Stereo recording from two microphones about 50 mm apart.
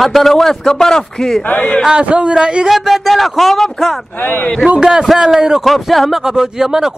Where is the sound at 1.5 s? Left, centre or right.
Left.